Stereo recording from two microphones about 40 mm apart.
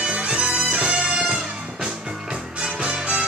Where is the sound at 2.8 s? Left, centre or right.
Right.